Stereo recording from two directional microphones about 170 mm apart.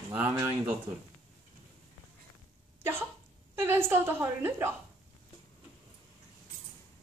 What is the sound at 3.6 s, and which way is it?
A woman's voice, 15° right (ahead or behind).